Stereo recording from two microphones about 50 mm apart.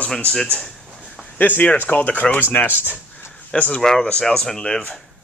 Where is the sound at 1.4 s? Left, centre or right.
Left.